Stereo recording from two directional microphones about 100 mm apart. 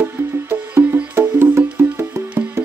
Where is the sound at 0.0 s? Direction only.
20° right (ahead or behind).